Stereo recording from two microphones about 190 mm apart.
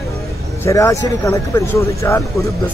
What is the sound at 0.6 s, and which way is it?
Speech, 15° left (ahead or behind).